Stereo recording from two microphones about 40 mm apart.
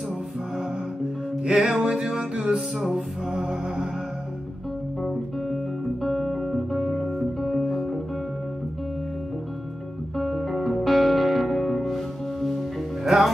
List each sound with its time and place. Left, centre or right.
1.5 s music: centre
5.0 s music: centre
10.1 s music: centre